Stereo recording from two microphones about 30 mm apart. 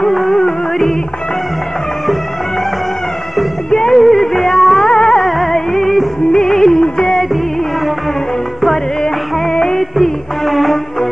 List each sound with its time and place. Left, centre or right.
0.1 s music: centre
3.7 s music: centre
4.9 s music: centre
5.2 s music: centre; by 7.2 s left
9.0 s music: centre
9.8 s music: centre